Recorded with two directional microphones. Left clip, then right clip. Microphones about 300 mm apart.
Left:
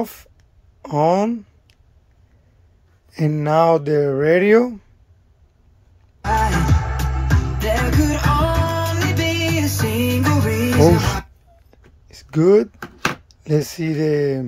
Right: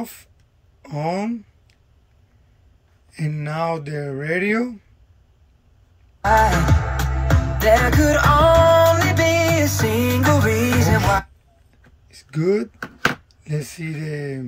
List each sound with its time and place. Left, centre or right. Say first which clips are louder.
0.0 s speech: left 7 dB; centre
3.1 s speech: left 10 dB; centre
6.2 s music: right 4 dB; centre
7.5 s music: right 6 dB; centre
10.2 s music: right 2 dB; centre
11.7 s a sound: left 2 dB; centre